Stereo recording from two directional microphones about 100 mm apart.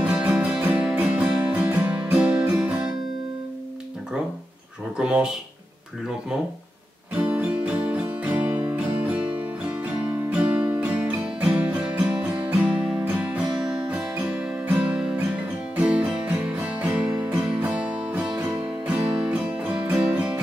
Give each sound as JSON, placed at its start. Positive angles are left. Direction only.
{"t": 0.0, "sound": "music", "side_deg": -15}
{"t": 4.9, "sound": "speech", "side_deg": -10}
{"t": 7.2, "sound": "music", "side_deg": -15}